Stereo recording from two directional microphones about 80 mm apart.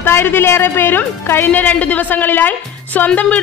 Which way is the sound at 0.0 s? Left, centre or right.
Left.